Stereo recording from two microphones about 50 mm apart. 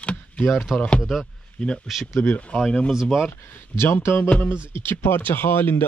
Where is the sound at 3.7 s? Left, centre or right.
Left.